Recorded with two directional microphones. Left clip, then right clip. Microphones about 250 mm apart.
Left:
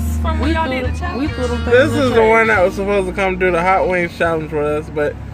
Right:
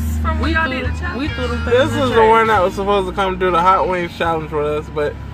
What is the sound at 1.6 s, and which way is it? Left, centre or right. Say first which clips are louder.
Speech: left 2 dB; centre.